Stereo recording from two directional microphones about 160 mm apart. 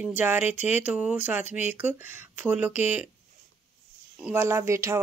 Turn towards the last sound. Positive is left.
turn(degrees=-15)  # may be behind; listen again after turning